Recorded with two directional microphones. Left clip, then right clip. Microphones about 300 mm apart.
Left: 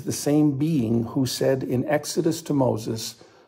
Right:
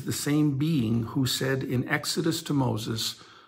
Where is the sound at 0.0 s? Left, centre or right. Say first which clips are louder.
Left 5 dB; centre.